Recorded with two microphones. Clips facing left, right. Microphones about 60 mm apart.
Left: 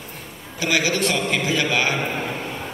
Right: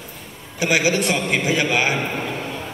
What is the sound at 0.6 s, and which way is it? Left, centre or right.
A man's voice, centre.